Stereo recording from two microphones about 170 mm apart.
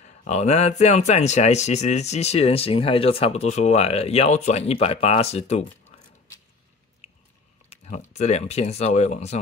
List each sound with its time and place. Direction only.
0.0 s speech: 45° left (ahead or behind)
7.7 s speech: 40° left (ahead or behind)